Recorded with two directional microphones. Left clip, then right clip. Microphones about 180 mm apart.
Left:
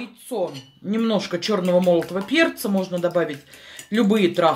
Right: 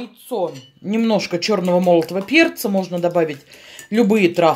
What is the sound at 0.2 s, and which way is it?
Speech, 30° right (ahead or behind).